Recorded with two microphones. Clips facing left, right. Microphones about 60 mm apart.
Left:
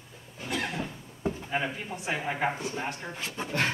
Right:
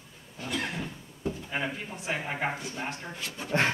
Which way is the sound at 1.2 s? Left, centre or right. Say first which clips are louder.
Left 2 dB; left.